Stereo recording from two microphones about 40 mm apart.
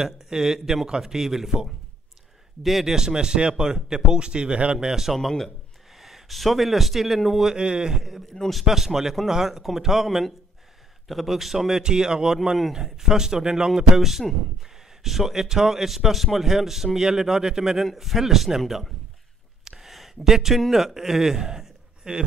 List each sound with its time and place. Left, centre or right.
0.0 s a man's voice: centre
4.7 s a man's voice: centre
5.9 s a man's voice: centre
7.5 s speech: right
8.3 s a man's voice: centre
8.6 s a man's voice: centre
19.6 s a sound: centre
20.2 s a man's voice: centre